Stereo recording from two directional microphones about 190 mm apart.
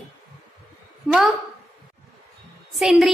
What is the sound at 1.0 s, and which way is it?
Speech, centre (ahead or behind).